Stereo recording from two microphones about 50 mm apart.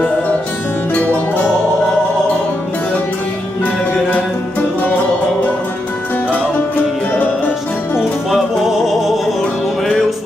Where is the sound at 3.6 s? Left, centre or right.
Left.